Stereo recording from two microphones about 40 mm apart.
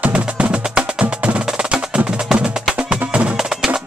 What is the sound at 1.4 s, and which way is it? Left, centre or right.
Percussion, centre.